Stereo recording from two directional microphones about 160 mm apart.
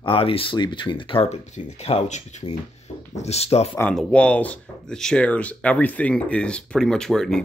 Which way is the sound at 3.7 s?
5° left (ahead or behind).